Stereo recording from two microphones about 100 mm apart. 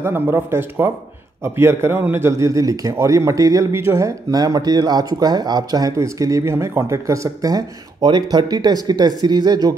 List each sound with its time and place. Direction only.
0.0 s a man's voice: 25° right (ahead or behind); by 9.8 s 45° right (ahead or behind)